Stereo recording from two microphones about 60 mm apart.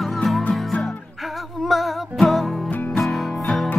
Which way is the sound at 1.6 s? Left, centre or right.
Centre.